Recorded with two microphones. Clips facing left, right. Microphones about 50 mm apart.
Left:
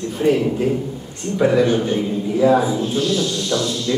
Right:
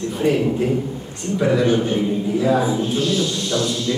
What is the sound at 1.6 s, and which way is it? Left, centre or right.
Speech, centre.